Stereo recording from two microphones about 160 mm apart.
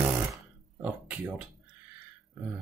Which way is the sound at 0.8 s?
10° right (ahead or behind).